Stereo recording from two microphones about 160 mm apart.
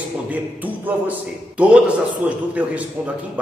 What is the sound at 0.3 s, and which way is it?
A man's voice, 10° right (ahead or behind).